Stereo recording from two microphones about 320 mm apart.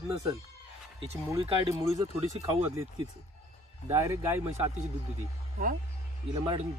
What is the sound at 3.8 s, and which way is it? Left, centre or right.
Speech, centre.